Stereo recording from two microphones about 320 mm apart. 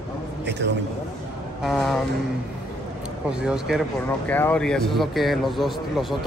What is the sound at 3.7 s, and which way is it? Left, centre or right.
A man's voice, centre.